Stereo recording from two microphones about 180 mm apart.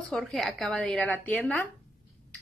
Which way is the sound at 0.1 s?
Centre (ahead or behind).